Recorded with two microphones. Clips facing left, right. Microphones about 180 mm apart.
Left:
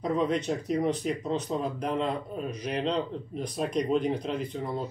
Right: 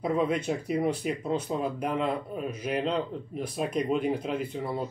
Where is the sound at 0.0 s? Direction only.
10° right (ahead or behind).